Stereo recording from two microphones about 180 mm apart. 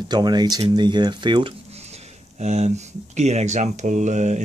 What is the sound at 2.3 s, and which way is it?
Speech, 35° right (ahead or behind).